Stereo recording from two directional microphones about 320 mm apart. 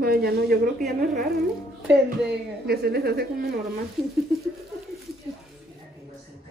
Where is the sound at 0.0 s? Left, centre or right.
Right.